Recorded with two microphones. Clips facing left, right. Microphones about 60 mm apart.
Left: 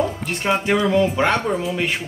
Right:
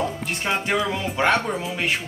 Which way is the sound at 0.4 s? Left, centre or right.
Centre.